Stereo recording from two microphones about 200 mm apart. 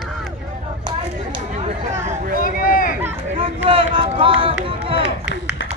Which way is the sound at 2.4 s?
45° left (ahead or behind).